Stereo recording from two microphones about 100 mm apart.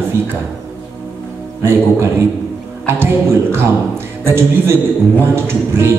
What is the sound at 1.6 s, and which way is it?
Speech, 25° right (ahead or behind).